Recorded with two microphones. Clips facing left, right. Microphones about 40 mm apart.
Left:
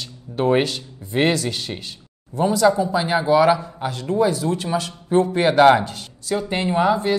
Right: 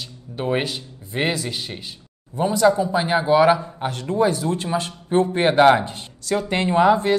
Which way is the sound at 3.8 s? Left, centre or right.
Right.